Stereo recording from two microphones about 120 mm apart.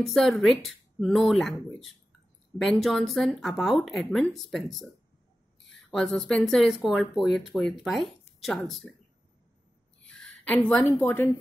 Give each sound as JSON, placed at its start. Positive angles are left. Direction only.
{"t": 0.0, "sound": "speech", "side_deg": 0}
{"t": 2.6, "sound": "speech", "side_deg": 5}
{"t": 5.9, "sound": "speech", "side_deg": 5}
{"t": 10.0, "sound": "a woman's voice", "side_deg": 5}